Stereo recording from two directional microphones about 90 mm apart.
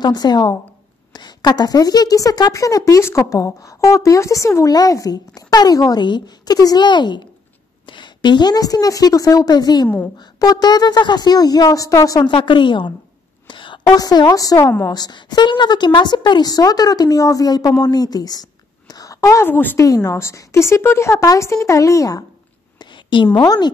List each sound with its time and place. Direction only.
0.0 s a woman's voice: 50° left (ahead or behind)
12.3 s a woman's voice: 65° left (ahead or behind)
13.5 s a sound: 60° left (ahead or behind)
13.9 s a woman's voice: 50° left (ahead or behind)
14.9 s a woman's voice: 50° left (ahead or behind)
19.4 s a woman's voice: 20° left (ahead or behind)
19.8 s speech: 35° left (ahead or behind)
22.8 s a sound: 60° left (ahead or behind)
23.4 s a woman's voice: 45° left (ahead or behind)